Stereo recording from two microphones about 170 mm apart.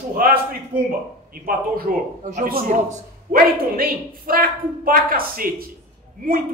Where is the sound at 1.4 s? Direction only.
60° right (ahead or behind).